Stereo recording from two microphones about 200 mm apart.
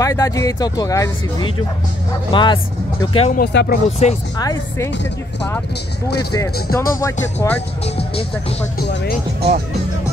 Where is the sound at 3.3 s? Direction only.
50° left (ahead or behind).